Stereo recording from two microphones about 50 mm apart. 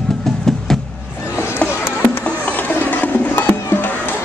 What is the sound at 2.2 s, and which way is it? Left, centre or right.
Music, left.